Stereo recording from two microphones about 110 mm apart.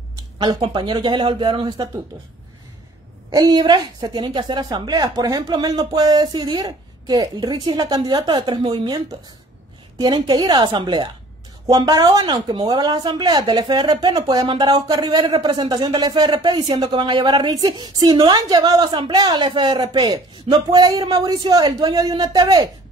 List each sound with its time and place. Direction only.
0.6 s speech: 45° right (ahead or behind)
3.3 s a woman's voice: 40° right (ahead or behind)